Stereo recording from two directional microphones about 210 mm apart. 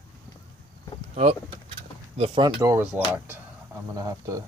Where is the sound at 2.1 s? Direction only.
25° right (ahead or behind).